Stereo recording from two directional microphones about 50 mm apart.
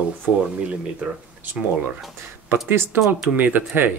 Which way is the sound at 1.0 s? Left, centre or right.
Right.